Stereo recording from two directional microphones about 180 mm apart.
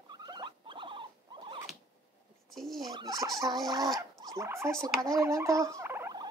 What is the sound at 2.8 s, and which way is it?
Fowl, 20° right (ahead or behind).